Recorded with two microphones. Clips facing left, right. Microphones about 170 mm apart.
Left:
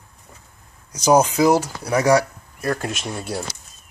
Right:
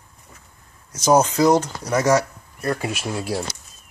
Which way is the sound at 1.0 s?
10° left (ahead or behind).